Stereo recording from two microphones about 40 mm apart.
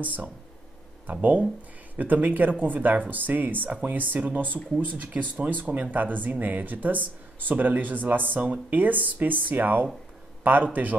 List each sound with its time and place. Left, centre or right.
0.0 s speech: right
5.4 s speech: right